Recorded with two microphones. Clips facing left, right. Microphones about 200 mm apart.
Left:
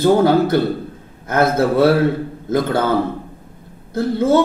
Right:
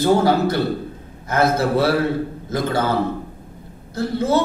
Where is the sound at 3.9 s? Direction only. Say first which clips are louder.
Left 4 dB; 50° left (ahead or behind).